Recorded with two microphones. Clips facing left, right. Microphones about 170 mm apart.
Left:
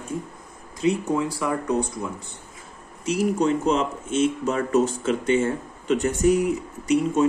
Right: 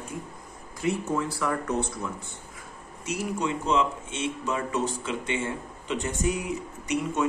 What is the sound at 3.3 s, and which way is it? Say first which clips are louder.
Speech: left 1 dB; 40° left (ahead or behind).